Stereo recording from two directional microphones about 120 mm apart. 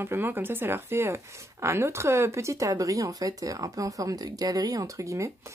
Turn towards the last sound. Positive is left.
turn(degrees=-25)  # may be behind; listen again after turning